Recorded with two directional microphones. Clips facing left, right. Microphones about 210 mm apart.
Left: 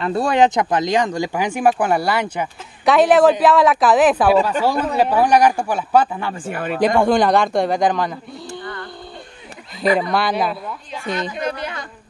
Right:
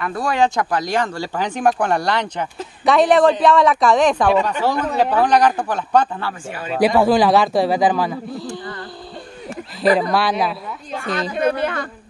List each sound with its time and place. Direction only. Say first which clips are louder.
0.0 s speech: left 3 dB; 25° left (ahead or behind); by 6.5 s 10° left (ahead or behind)
6.5 s speech: left 3 dB; 55° left (ahead or behind)
6.8 s speech: right 1 dB; 5° right (ahead or behind)
10.1 s speech: even; centre (ahead or behind)
11.3 s a woman's voice: right 6 dB; 55° right (ahead or behind)